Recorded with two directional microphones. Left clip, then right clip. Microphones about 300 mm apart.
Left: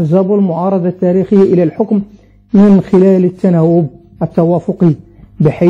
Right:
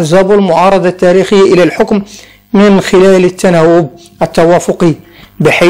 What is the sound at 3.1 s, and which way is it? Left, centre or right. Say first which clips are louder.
A man's voice: right 5 dB; centre.